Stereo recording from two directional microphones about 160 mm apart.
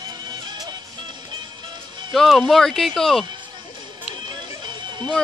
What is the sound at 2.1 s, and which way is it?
Speech, centre (ahead or behind).